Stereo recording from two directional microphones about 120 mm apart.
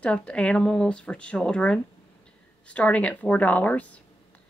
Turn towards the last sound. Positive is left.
turn(degrees=10)  # may be behind; listen again after turning